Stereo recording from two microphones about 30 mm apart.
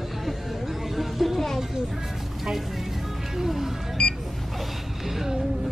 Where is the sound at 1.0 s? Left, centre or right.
Centre.